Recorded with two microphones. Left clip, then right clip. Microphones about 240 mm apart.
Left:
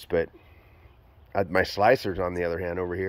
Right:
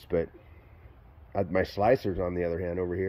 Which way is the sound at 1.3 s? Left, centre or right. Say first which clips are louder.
Left 4 dB; centre.